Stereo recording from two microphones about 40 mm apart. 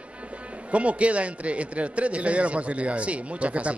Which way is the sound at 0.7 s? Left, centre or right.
Right.